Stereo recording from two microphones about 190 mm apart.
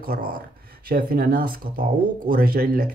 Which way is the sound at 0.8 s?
50° right (ahead or behind).